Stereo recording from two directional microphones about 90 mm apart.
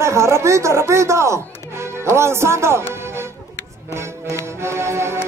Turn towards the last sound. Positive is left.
turn(degrees=-30)  # may be behind; listen again after turning